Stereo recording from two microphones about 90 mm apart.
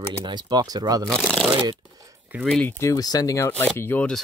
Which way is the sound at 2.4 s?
5° left (ahead or behind).